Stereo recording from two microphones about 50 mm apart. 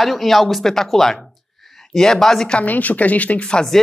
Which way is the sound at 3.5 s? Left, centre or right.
Centre.